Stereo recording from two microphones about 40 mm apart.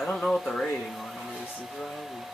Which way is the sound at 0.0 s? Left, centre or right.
Centre.